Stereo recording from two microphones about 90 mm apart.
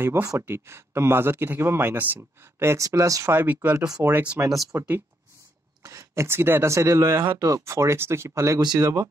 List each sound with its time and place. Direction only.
0.0 s speech: 30° right (ahead or behind)
3.3 s speech: 20° right (ahead or behind)
3.7 s speech: 40° right (ahead or behind)
4.0 s speech: 20° right (ahead or behind)
7.3 s speech: 40° right (ahead or behind)